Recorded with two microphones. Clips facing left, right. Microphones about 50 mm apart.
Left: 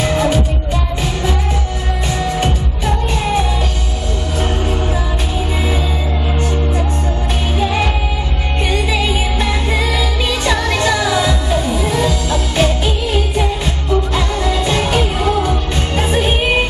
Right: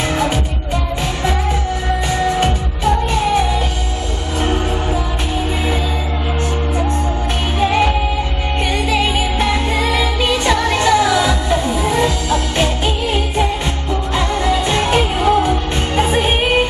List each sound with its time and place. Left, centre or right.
8.9 s music: centre
10.5 s music: centre
12.8 s music: right